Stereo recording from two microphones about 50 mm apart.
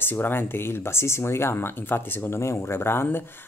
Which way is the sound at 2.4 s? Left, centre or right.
Left.